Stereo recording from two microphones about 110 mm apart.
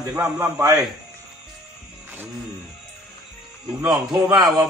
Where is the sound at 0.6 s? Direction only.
35° right (ahead or behind).